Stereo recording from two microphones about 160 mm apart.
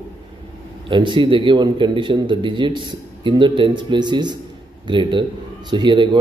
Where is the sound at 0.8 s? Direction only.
30° right (ahead or behind).